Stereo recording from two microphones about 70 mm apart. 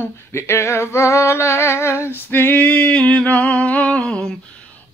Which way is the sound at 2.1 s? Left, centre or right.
Left.